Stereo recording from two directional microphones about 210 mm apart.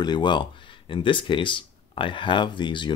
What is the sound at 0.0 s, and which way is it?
Speech, 20° left (ahead or behind).